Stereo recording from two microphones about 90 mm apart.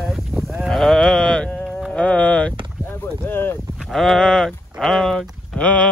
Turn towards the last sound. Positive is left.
turn(degrees=10)  # may be behind; listen again after turning